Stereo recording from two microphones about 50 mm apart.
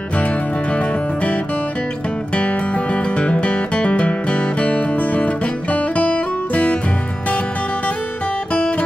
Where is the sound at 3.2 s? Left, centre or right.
Left.